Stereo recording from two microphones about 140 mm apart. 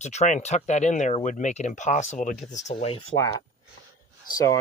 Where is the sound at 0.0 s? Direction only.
55° left (ahead or behind).